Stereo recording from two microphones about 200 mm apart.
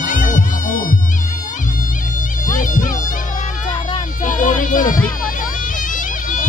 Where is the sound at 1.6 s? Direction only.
40° left (ahead or behind).